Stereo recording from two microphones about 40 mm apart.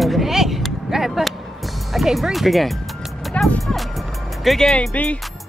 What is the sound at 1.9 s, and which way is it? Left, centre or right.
Speech, centre.